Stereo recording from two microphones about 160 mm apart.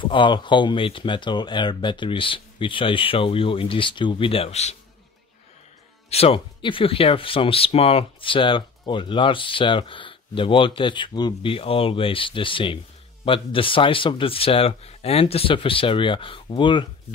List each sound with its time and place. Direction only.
0.0 s speech: 30° left (ahead or behind)
6.0 s speech: 40° left (ahead or behind)